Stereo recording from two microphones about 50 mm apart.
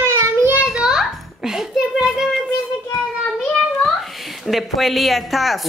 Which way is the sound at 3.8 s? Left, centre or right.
Centre.